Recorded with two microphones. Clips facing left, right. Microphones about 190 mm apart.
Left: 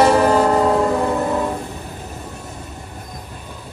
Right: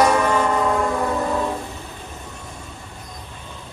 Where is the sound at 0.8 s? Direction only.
20° left (ahead or behind).